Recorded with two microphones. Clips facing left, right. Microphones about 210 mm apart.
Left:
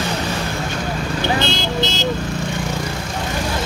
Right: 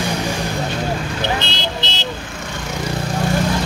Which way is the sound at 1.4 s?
45° left (ahead or behind).